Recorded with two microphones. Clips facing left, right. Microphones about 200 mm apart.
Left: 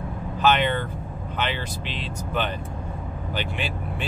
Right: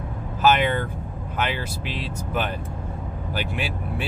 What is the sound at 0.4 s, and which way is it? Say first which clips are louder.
Speech: right 2 dB; 5° right (ahead or behind).